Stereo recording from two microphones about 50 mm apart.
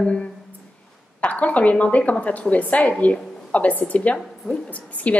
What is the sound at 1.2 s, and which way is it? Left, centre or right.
A woman's voice, left.